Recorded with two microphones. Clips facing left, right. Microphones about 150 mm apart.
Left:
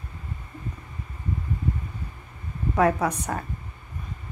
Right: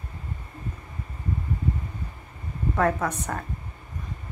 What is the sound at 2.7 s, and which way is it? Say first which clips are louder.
Speech: left 3 dB; 10° left (ahead or behind).